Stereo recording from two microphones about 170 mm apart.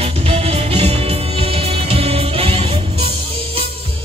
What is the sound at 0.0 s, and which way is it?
Music, 35° right (ahead or behind).